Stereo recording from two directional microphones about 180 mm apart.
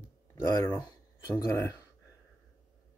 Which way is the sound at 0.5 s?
15° left (ahead or behind).